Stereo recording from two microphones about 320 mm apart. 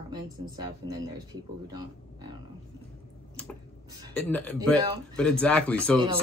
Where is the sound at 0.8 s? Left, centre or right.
Right.